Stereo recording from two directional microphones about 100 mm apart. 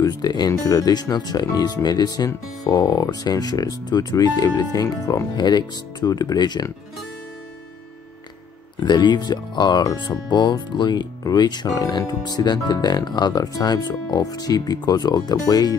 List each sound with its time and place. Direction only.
0.0 s speech: 45° left (ahead or behind)
8.7 s speech: 45° left (ahead or behind)